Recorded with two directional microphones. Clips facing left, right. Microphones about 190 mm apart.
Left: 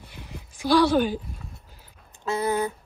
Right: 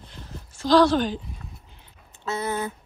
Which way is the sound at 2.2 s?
15° left (ahead or behind).